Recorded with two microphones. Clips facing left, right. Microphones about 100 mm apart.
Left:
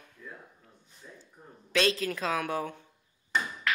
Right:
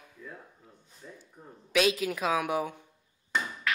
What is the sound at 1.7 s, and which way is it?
Speech, 5° right (ahead or behind).